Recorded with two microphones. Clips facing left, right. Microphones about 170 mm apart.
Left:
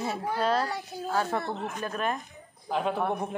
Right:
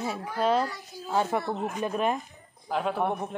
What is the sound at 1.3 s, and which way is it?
Speech, 10° right (ahead or behind).